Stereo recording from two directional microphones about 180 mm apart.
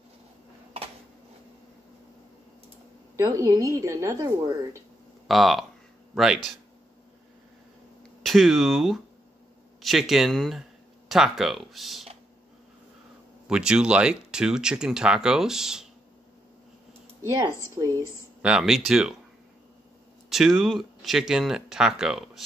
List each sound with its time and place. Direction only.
3.2 s a woman's voice: 20° right (ahead or behind)
5.3 s speech: centre (ahead or behind)
8.2 s speech: centre (ahead or behind)
13.5 s speech: 5° right (ahead or behind)
17.3 s speech: 20° right (ahead or behind)
18.4 s speech: 5° right (ahead or behind)
20.2 s speech: centre (ahead or behind)